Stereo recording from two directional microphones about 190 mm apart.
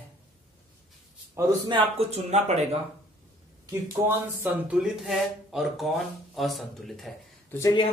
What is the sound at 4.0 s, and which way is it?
Speech, 10° right (ahead or behind).